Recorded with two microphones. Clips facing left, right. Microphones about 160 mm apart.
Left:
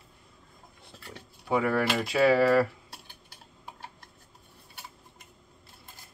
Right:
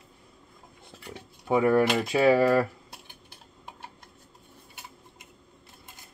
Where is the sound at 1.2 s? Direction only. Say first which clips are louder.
Right 3 dB; 20° right (ahead or behind).